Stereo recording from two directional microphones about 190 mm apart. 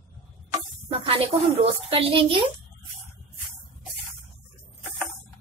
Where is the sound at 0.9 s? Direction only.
30° right (ahead or behind).